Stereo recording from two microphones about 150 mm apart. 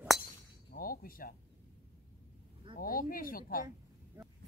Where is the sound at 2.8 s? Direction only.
70° left (ahead or behind).